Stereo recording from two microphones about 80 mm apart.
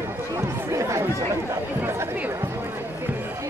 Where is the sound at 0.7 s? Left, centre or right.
Right.